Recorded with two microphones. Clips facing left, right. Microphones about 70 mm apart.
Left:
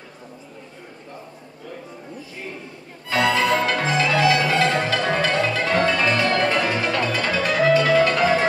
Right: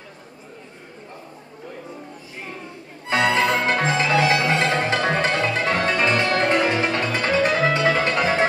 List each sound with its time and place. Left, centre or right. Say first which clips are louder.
3.1 s music: even; right